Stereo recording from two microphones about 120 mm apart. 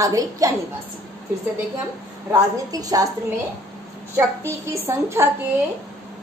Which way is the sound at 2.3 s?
30° right (ahead or behind).